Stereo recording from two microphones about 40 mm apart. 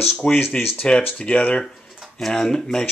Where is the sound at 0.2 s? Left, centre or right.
Left.